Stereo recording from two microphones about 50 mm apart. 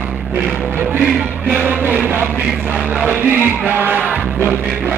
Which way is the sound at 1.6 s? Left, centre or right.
Right.